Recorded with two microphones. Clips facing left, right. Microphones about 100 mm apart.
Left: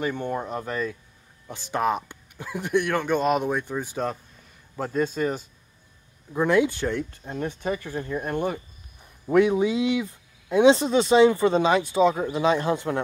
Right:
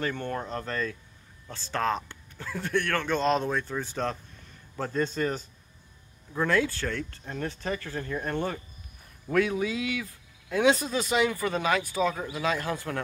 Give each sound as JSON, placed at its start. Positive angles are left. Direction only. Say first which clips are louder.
{"t": 0.0, "sound": "speech", "louder": "left 4 dB", "side_deg": 15}